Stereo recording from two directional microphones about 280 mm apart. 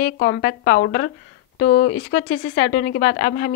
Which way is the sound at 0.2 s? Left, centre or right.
Left.